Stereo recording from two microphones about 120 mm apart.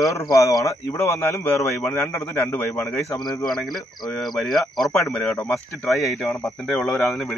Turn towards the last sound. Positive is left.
turn(degrees=0)  # may be behind; listen again after turning